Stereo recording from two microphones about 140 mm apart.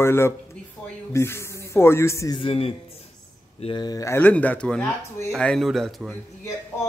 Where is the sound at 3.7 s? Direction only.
25° left (ahead or behind).